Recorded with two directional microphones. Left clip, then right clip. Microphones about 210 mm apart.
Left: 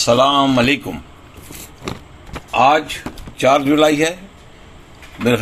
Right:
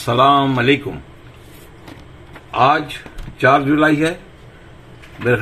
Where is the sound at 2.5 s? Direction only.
40° left (ahead or behind).